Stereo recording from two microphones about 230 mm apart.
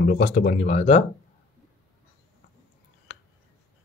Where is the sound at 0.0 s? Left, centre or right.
Left.